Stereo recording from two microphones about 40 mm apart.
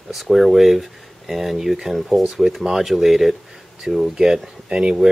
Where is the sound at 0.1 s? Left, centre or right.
Centre.